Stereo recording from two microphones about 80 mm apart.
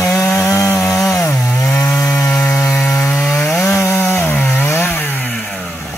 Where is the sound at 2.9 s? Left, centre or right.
Left.